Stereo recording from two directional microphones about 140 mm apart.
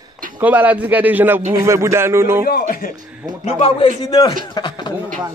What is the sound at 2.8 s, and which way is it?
Speech, 90° left.